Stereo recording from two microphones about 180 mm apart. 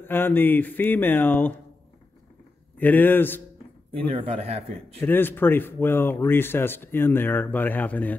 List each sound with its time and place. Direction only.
0.0 s speech: 10° left (ahead or behind)
2.8 s speech: 10° left (ahead or behind)
4.1 s speech: 30° right (ahead or behind)
5.0 s speech: 10° left (ahead or behind)